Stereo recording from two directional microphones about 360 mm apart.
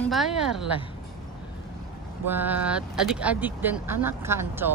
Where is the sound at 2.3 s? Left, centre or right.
Centre.